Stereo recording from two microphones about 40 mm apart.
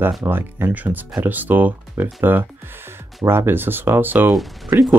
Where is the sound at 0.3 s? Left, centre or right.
Right.